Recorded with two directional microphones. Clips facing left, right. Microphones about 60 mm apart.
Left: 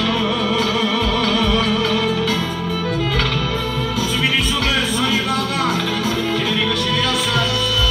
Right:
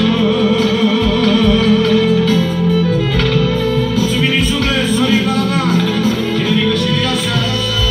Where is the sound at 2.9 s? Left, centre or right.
Right.